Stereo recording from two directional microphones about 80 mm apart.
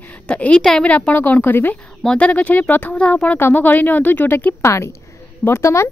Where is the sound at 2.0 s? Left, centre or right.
Centre; by 5.9 s left.